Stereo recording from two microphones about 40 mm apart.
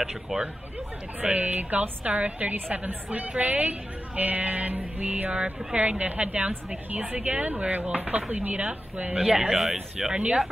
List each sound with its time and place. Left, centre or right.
0.1 s speech: centre
1.2 s a woman's voice: right
5.3 s a woman's voice: right
5.8 s a woman's voice: right
9.2 s speech: centre